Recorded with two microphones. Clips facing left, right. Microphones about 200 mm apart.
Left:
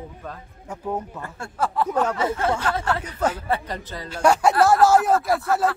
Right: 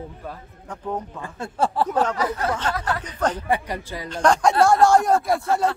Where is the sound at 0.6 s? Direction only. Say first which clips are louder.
Left 1 dB; 10° left (ahead or behind).